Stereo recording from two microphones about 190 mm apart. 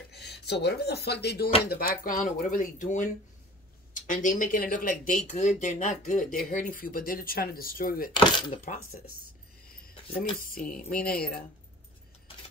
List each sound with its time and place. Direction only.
0.1 s speech: 60° left (ahead or behind)
8.1 s speech: 25° left (ahead or behind)
10.4 s speech: 50° left (ahead or behind)